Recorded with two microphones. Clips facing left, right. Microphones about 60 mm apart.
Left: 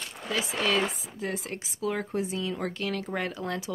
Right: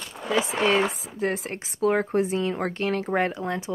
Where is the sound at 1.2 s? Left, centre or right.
Right.